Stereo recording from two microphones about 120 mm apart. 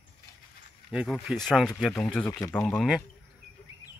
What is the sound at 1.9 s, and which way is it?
Speech, 15° left (ahead or behind).